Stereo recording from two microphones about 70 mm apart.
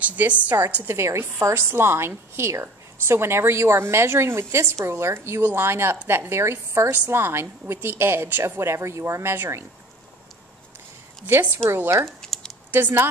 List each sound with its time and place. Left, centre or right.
0.0 s a woman's voice: right
0.8 s a woman's voice: right
11.5 s a woman's voice: right
12.2 s a sound: centre
12.7 s a woman's voice: right